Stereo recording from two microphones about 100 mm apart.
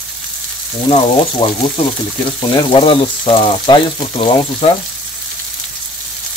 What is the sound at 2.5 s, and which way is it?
Frying, 60° left (ahead or behind).